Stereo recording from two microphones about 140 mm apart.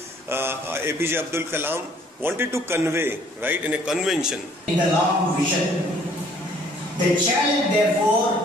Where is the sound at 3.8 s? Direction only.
5° right (ahead or behind).